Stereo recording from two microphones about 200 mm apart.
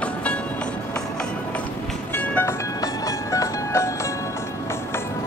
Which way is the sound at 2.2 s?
10° left (ahead or behind).